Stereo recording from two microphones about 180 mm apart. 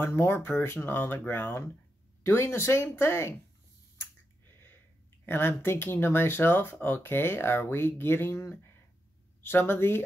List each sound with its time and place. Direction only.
0.0 s speech: 15° left (ahead or behind)
5.2 s speech: 10° left (ahead or behind)